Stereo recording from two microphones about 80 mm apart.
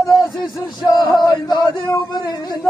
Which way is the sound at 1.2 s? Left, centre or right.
Left.